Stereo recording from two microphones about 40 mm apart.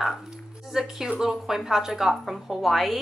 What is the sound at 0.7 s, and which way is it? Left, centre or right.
Speech, centre.